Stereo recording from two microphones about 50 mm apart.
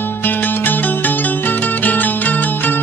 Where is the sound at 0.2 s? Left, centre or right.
Left.